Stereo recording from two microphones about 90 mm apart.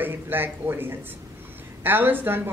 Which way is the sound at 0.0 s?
25° right (ahead or behind).